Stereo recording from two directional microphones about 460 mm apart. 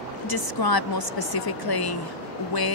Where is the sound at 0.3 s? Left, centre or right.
Left.